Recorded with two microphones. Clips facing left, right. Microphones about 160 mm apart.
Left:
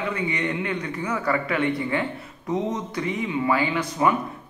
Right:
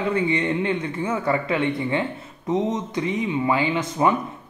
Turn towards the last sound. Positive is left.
turn(degrees=-20)  # may be behind; listen again after turning